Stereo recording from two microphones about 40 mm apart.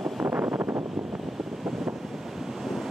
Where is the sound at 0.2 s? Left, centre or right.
Right.